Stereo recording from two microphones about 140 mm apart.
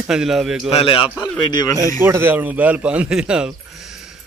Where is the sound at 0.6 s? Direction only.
40° left (ahead or behind).